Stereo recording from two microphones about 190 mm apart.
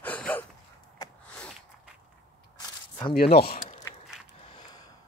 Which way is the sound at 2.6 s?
20° left (ahead or behind).